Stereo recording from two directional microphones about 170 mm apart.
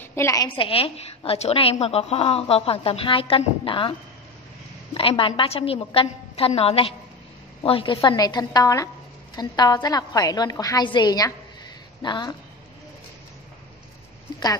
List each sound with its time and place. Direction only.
0.0 s a woman's voice: 15° left (ahead or behind)
0.6 s a woman's voice: 35° left (ahead or behind)
4.9 s a woman's voice: 30° left (ahead or behind)